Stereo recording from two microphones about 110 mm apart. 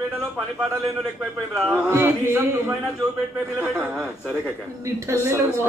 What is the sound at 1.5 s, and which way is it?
Speech, 10° right (ahead or behind).